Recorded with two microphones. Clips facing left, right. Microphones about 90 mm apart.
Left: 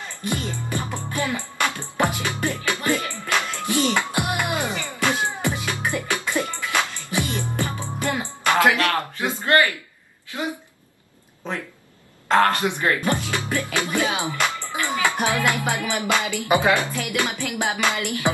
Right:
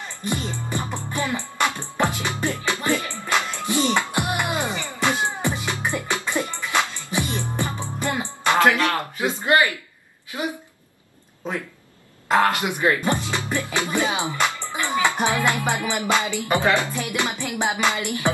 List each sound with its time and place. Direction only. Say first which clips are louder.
0.3 s music: even; 20° right (ahead or behind)
2.0 s music: left 1 dB; 15° left (ahead or behind)
2.2 s music: even; 20° right (ahead or behind)
8.8 s a sound: even; 20° right (ahead or behind)
12.3 s speech: left 1 dB; 10° right (ahead or behind)
14.4 s music: even; 20° right (ahead or behind)
16.4 s speech: left 3 dB; 15° left (ahead or behind)
16.9 s music: even; 20° right (ahead or behind)